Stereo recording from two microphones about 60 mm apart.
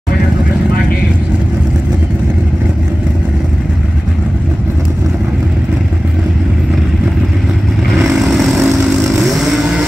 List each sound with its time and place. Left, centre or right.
8.0 s vehicle: centre